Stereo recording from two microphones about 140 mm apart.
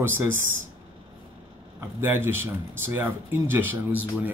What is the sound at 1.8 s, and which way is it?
Speech, 15° right (ahead or behind).